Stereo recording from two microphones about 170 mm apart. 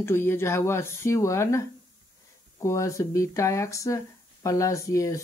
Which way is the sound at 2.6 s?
20° left (ahead or behind).